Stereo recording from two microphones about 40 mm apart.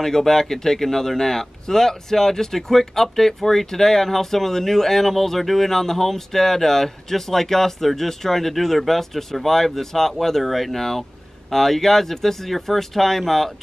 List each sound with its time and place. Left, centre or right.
0.0 s speech: centre